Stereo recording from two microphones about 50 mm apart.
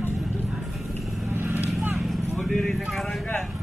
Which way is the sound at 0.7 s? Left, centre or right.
Centre.